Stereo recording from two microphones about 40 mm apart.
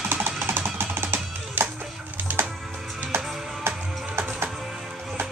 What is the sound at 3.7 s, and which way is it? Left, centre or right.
Music, right.